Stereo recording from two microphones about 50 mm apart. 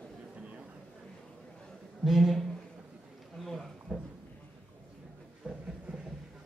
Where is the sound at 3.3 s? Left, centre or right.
Centre.